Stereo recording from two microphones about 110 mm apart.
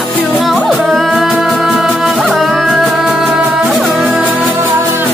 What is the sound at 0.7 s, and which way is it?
Music, centre (ahead or behind).